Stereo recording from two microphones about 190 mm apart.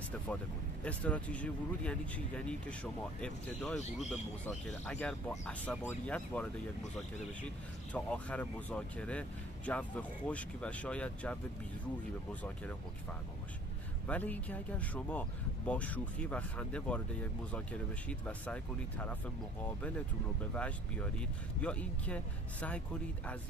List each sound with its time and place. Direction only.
0.8 s speech: 5° left (ahead or behind)
7.9 s speech: 5° left (ahead or behind)
14.0 s speech: 10° left (ahead or behind)
20.5 s speech: 5° left (ahead or behind)